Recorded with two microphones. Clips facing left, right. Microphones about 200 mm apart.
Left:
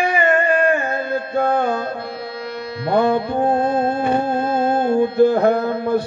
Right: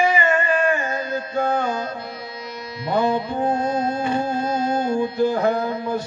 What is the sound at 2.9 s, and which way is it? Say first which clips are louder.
Music: left 4 dB; 60° left (ahead or behind).